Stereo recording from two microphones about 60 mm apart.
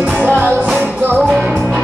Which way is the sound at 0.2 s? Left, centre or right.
Right.